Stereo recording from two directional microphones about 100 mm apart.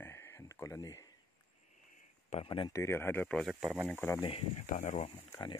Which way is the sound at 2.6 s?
30° left (ahead or behind).